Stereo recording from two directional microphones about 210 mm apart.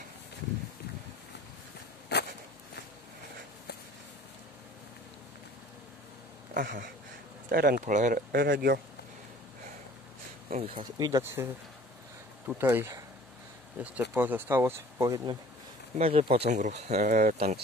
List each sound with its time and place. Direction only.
2.1 s a sound: 50° left (ahead or behind)
6.5 s duck: 45° right (ahead or behind)
7.5 s speech: 45° right (ahead or behind)
10.5 s speech: 25° right (ahead or behind)
16.0 s speech: 25° right (ahead or behind)